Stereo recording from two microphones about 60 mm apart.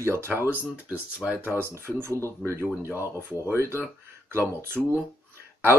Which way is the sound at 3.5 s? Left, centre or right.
Right.